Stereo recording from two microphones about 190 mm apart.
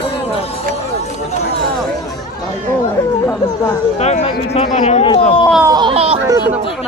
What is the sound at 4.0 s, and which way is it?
Speech, 35° left (ahead or behind).